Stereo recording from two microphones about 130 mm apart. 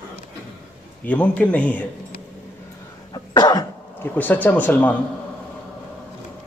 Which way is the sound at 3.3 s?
30° left (ahead or behind).